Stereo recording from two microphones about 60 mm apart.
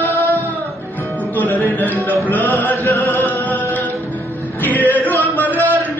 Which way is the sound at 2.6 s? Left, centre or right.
Left.